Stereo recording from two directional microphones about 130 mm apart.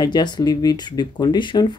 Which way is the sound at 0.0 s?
35° left (ahead or behind).